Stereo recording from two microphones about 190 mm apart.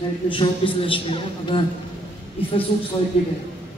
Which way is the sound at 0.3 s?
30° left (ahead or behind).